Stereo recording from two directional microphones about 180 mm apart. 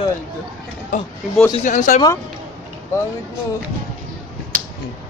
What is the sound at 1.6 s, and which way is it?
Speech, 45° left (ahead or behind).